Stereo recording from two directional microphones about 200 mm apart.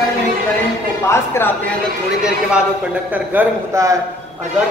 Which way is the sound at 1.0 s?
15° left (ahead or behind).